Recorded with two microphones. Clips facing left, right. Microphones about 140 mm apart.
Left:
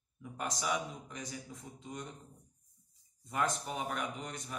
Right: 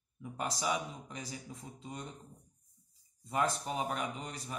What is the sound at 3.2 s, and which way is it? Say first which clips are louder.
A man's voice: right 2 dB; 25° right (ahead or behind).